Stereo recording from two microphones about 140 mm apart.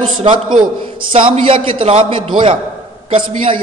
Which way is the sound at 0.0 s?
40° right (ahead or behind).